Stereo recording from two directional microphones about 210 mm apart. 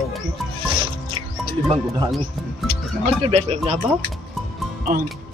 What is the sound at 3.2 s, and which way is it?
Speech, 30° right (ahead or behind).